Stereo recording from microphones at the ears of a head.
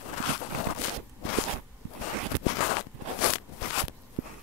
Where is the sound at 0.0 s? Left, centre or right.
Left.